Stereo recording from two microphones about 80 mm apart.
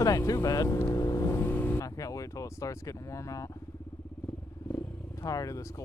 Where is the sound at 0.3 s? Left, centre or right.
Left.